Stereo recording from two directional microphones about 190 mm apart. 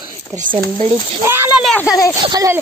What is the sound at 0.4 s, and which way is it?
Speech, 45° right (ahead or behind).